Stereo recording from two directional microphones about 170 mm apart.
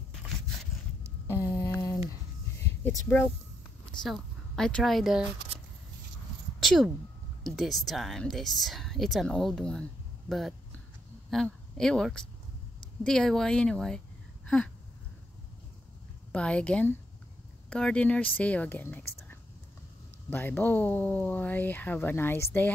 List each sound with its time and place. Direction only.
1.2 s a sound: 20° left (ahead or behind)
4.0 s speech: 5° left (ahead or behind)
6.6 s speech: centre (ahead or behind)
16.3 s speech: 5° left (ahead or behind)
20.2 s speech: 10° left (ahead or behind)